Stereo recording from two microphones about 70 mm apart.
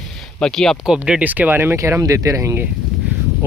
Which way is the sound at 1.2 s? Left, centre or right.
Right.